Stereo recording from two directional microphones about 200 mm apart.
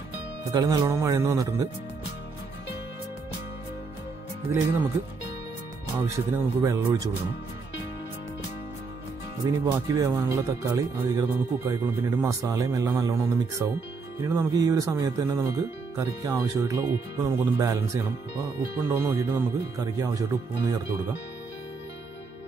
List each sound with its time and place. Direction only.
0.5 s speech: 20° right (ahead or behind)
4.5 s speech: 15° right (ahead or behind)
5.9 s speech: 15° right (ahead or behind)
9.4 s speech: 15° right (ahead or behind)